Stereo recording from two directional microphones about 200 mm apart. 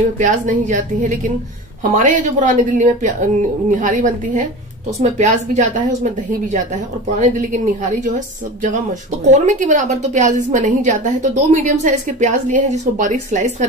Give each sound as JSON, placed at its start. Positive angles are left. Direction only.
{"t": 0.2, "sound": "a woman's voice", "side_deg": -40}
{"t": 9.2, "sound": "a woman's voice", "side_deg": -35}